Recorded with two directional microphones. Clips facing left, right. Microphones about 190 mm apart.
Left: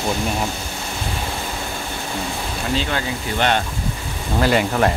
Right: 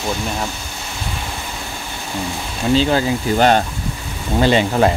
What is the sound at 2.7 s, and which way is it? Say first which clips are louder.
Speech: right 9 dB; 35° right (ahead or behind).